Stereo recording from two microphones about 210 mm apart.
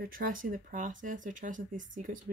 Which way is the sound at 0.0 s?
40° right (ahead or behind).